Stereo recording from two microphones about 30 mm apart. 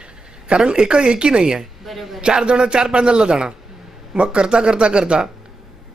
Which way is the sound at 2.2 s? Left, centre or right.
Right.